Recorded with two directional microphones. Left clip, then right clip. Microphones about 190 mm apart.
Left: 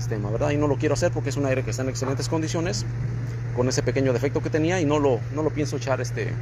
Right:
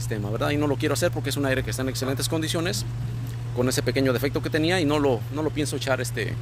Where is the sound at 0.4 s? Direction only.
30° right (ahead or behind).